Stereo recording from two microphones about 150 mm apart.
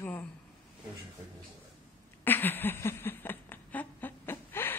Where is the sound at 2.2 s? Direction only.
15° left (ahead or behind).